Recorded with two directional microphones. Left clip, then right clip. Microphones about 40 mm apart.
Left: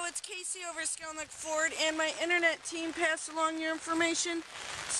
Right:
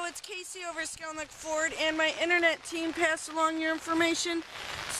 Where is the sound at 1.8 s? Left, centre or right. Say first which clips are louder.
Right 3 dB; left.